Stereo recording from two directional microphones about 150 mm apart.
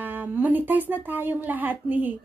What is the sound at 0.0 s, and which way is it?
Speech, 10° right (ahead or behind).